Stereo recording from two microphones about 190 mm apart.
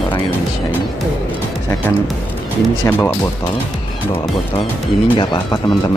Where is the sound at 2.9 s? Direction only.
10° left (ahead or behind).